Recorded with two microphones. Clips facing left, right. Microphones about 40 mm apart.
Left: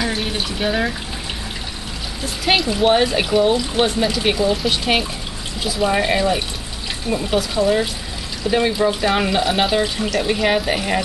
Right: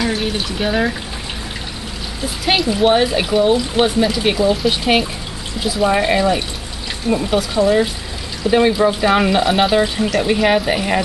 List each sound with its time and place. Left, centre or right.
0.0 s speech: centre
2.4 s speech: centre